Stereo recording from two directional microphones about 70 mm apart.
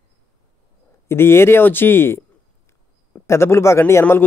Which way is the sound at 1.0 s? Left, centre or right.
Left.